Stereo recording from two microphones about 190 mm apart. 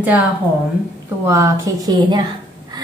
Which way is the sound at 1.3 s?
15° right (ahead or behind).